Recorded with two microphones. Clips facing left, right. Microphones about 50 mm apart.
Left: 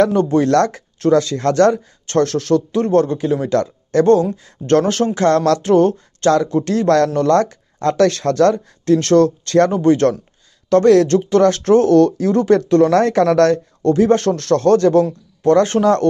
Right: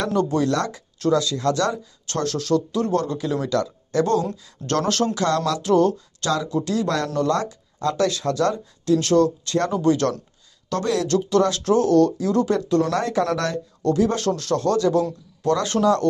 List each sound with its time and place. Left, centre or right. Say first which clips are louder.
0.0 s speech: left 7 dB; left
0.5 s speech: left 9 dB; left
9.8 s speech: left 6 dB; left
10.7 s speech: left 11 dB; left
13.8 s speech: left 7 dB; left